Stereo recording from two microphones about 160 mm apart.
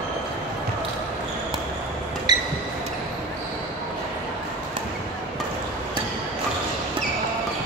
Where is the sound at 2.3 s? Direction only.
25° right (ahead or behind).